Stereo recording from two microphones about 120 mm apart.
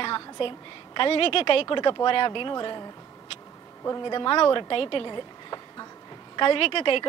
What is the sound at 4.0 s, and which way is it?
A woman's voice, 40° left (ahead or behind).